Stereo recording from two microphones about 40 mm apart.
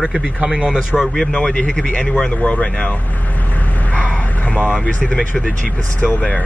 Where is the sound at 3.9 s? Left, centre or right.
Left.